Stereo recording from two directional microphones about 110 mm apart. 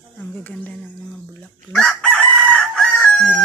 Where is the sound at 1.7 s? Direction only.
10° left (ahead or behind).